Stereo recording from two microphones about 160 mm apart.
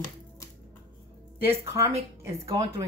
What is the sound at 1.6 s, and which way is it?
Speech, 20° right (ahead or behind).